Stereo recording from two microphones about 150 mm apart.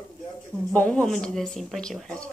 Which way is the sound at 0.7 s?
10° left (ahead or behind).